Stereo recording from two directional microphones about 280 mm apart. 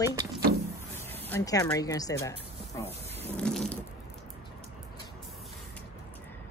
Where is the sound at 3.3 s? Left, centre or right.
Centre.